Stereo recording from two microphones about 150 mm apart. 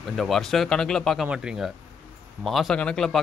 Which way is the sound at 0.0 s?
Centre (ahead or behind).